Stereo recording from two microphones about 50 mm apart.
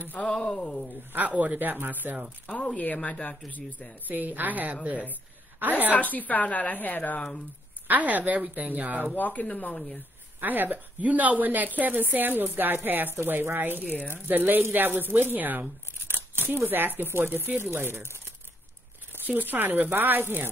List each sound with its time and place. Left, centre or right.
0.2 s speech: centre
1.1 s a woman's voice: right
2.8 s a woman's voice: left
4.1 s a woman's voice: right
5.9 s a woman's voice: left
7.2 s speech: centre
7.9 s a woman's voice: right
9.1 s a woman's voice: left
10.4 s a woman's voice: right
13.2 s speech: right
13.8 s a woman's voice: left
14.1 s a woman's voice: right
16.6 s speech: right
19.1 s a woman's voice: right